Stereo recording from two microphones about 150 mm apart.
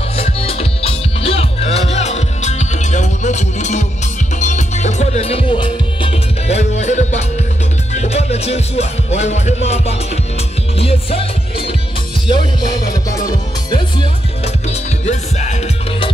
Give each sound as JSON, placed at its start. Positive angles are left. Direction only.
{"t": 0.2, "sound": "music", "side_deg": 40}
{"t": 14.4, "sound": "music", "side_deg": 50}